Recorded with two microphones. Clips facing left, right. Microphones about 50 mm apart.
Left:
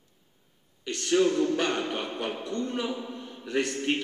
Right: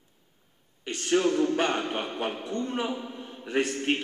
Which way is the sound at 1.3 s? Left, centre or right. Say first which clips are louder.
Right 1 dB; centre.